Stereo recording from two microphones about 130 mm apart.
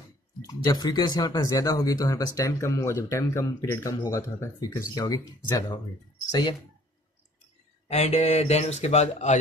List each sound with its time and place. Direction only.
0.5 s speech: 30° left (ahead or behind)
7.9 s speech: 60° left (ahead or behind)